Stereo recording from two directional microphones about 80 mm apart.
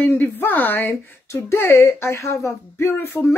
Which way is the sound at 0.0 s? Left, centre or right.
Left.